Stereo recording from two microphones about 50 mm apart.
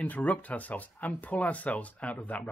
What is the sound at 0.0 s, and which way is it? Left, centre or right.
Speech, left.